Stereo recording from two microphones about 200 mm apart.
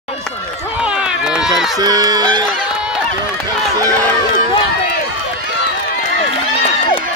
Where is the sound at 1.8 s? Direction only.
20° right (ahead or behind).